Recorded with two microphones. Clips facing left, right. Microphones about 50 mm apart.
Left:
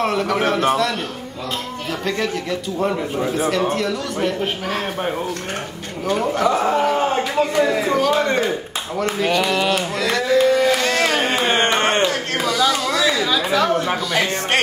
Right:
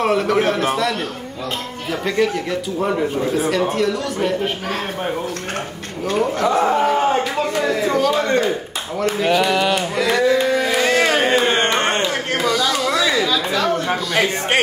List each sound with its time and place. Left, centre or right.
0.0 s a man's voice: centre
6.1 s a man's voice: centre
9.2 s a sound: centre
11.4 s music: centre
12.4 s a sound: centre
13.2 s chatter: centre
14.1 s speech: centre